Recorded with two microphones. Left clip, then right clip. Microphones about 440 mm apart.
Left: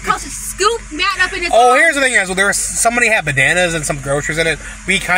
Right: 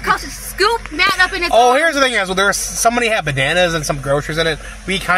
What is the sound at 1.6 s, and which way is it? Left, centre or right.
A man's voice, right.